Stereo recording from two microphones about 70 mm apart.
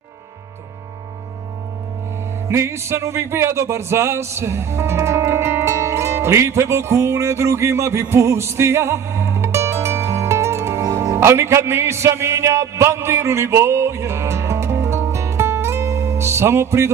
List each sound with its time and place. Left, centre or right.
2.4 s speech: right
11.1 s music: right